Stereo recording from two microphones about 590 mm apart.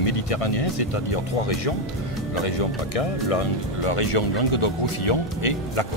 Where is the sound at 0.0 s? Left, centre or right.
Left.